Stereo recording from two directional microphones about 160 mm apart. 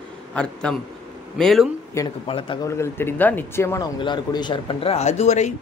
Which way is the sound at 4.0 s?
30° left (ahead or behind).